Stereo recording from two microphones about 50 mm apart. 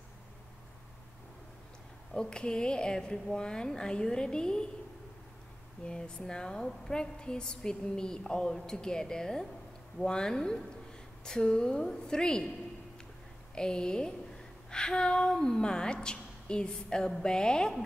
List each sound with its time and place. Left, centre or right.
2.1 s a woman's voice: centre
5.9 s a woman's voice: centre
13.6 s a woman's voice: centre